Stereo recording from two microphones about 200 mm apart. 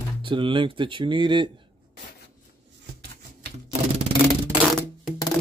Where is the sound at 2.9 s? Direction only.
55° right (ahead or behind).